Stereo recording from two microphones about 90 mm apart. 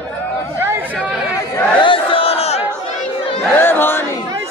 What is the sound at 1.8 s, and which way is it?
Battle cry, 75° left (ahead or behind).